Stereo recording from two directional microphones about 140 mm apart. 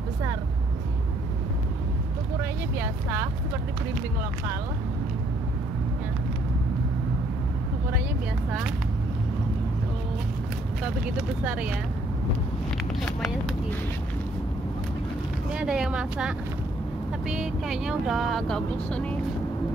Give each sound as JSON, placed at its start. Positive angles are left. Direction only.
{"t": 2.8, "sound": "speech", "side_deg": -15}
{"t": 11.4, "sound": "speech", "side_deg": -10}
{"t": 13.0, "sound": "speech", "side_deg": 5}
{"t": 15.5, "sound": "speech", "side_deg": -5}